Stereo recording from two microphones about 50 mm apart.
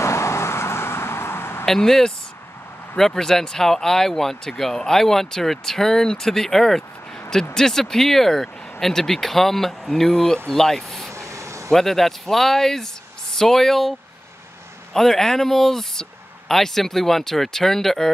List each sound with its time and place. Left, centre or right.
0.0 s vehicle: left
1.7 s speech: centre
11.1 s a sound: right
11.7 s speech: centre
15.0 s speech: centre